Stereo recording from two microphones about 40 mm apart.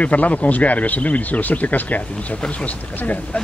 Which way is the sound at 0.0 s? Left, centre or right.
Left.